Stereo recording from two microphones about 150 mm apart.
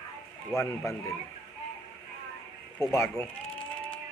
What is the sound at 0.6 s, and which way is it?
Speech, 20° left (ahead or behind).